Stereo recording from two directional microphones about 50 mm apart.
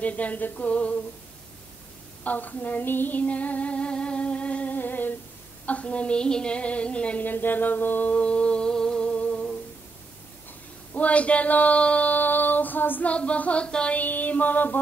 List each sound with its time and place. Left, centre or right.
0.0 s female singing: left
2.2 s female singing: left
4.7 s humming: left
5.7 s female singing: left
7.2 s music: left
10.9 s a sound: left
13.1 s a sound: left
13.9 s music: left